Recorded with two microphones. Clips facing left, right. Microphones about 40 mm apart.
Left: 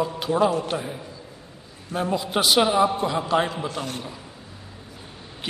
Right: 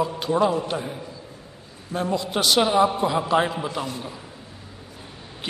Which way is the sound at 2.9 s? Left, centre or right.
Centre.